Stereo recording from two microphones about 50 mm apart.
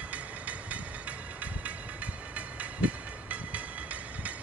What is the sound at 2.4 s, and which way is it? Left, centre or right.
Train, right.